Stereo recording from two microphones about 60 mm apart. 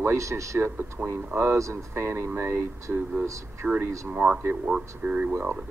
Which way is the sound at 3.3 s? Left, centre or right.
Right.